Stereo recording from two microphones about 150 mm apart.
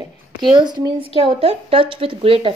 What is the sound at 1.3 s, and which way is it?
A woman's voice, 40° right (ahead or behind).